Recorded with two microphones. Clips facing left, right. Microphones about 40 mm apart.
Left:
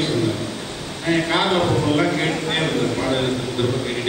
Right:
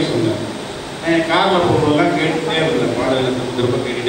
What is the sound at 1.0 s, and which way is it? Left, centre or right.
A man's voice, centre.